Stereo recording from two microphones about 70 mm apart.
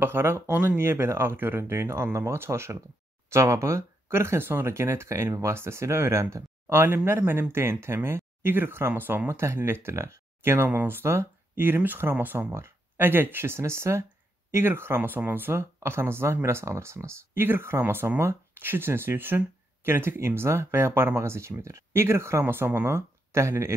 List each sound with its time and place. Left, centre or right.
0.0 s speech: right
12.5 s speech: right